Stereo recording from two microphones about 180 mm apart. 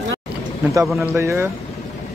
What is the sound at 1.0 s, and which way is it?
Speech, 15° right (ahead or behind).